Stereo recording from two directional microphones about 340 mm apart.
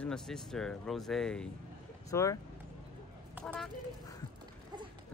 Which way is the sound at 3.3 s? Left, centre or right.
Centre.